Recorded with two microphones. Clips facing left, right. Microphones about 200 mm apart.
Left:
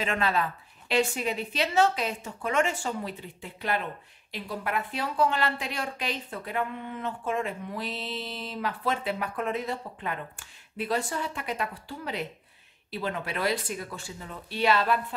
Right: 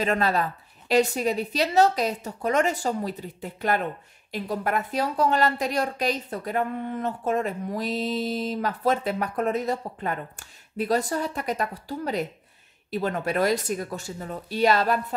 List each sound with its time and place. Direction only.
0.0 s a woman's voice: 40° right (ahead or behind)